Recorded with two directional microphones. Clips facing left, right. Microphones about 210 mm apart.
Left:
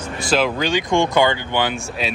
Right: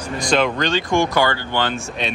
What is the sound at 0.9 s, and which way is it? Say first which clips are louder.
Speech: left 2 dB; 25° left (ahead or behind).